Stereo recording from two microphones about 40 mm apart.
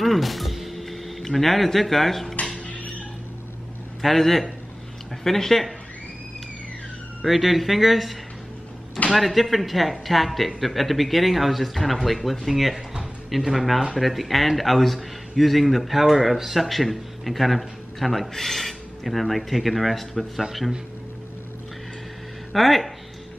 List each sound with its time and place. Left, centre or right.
0.0 s music: centre
2.6 s a sound: left
4.0 s speech: centre
7.2 s speech: centre
22.5 s speech: centre